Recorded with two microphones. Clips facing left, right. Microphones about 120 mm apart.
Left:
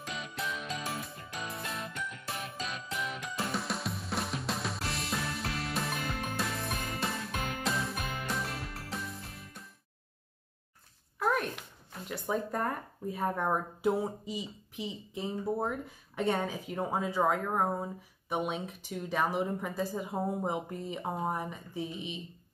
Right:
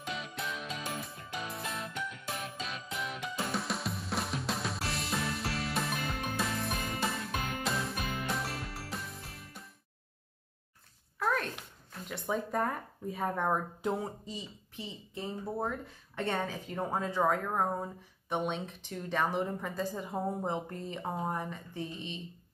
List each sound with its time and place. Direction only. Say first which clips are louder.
0.0 s music: even; centre (ahead or behind)
11.1 s a sound: left 2 dB; 10° left (ahead or behind)
12.3 s a woman's voice: even; centre (ahead or behind)